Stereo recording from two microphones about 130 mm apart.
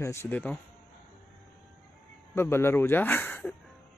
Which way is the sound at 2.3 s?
20° left (ahead or behind).